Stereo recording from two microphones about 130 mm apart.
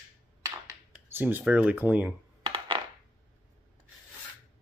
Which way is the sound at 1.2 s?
15° right (ahead or behind).